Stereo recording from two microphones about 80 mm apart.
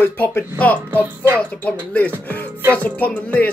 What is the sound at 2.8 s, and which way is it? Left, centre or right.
Speech, centre.